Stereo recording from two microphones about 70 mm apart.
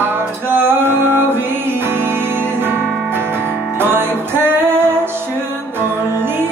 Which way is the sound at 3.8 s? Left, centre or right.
Right.